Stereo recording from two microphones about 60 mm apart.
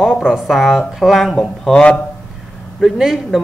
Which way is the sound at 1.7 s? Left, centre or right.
Centre.